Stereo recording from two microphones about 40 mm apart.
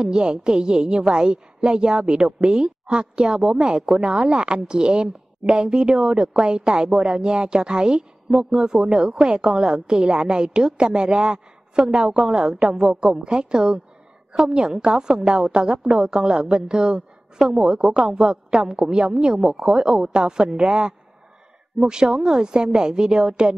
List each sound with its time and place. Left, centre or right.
0.0 s a woman's voice: right